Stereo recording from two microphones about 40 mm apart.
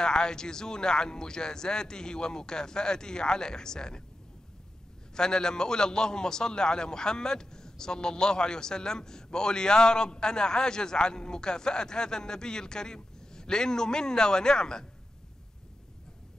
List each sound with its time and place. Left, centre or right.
0.0 s a man's voice: centre
5.1 s a man's voice: centre